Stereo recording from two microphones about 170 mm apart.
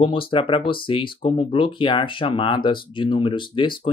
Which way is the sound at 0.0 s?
30° left (ahead or behind).